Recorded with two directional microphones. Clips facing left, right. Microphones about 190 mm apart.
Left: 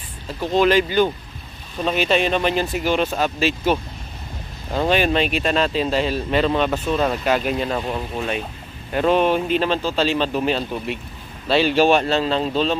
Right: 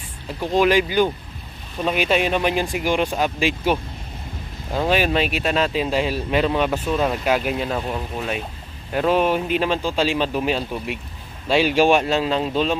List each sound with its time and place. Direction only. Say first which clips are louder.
0.4 s speech: left 1 dB; 10° right (ahead or behind)